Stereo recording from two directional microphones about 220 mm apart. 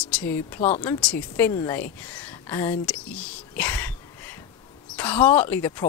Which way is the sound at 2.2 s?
10° left (ahead or behind).